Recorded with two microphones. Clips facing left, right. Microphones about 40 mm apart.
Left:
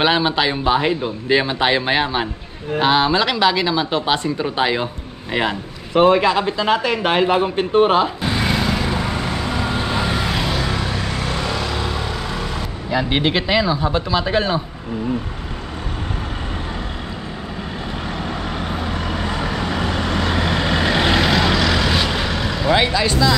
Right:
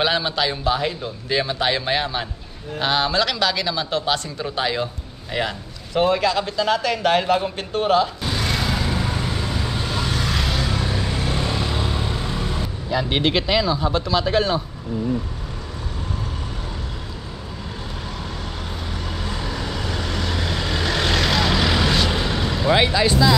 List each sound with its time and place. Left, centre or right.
0.0 s speech: left
9.6 s vehicle: left
10.4 s vehicle: centre
12.9 s speech: centre
18.6 s vehicle: left; by 21.5 s centre
22.8 s vehicle: centre